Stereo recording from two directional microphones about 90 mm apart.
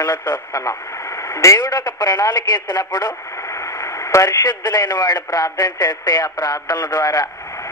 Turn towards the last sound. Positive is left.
turn(degrees=40)  # may be behind; listen again after turning